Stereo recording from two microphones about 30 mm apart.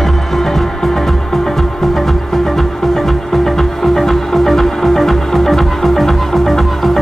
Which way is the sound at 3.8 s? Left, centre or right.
Centre.